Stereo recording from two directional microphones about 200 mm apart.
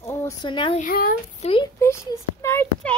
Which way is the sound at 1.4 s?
25° left (ahead or behind).